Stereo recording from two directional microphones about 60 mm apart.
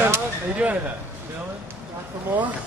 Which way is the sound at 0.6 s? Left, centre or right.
Centre.